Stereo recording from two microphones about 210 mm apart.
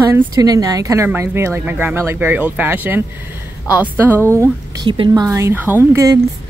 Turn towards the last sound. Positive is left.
turn(degrees=-15)  # may be behind; listen again after turning